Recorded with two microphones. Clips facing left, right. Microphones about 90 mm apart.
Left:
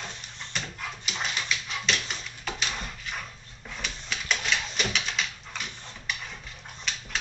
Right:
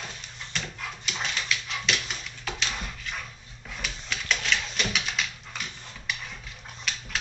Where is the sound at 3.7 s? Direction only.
Centre (ahead or behind).